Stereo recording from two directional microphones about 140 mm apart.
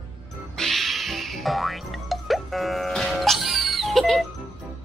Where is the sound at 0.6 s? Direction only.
Centre (ahead or behind).